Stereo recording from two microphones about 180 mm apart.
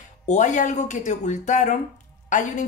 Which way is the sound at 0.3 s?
45° left (ahead or behind).